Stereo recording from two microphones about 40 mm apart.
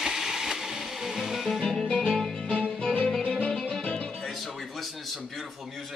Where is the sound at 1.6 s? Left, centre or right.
Centre.